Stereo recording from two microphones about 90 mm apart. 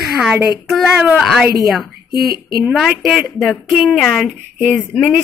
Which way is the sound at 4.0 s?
10° left (ahead or behind).